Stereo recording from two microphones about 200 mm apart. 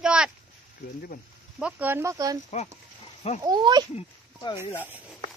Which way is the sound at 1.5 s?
5° right (ahead or behind).